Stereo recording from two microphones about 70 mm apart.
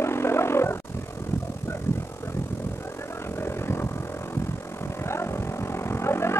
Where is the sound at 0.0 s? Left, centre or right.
Left.